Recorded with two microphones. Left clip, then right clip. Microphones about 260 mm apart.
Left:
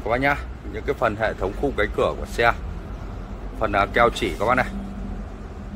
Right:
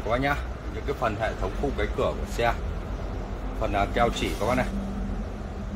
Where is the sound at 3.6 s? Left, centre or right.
Centre.